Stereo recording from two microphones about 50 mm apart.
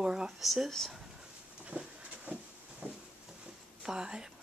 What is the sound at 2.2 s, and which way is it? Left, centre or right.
Vehicle, right.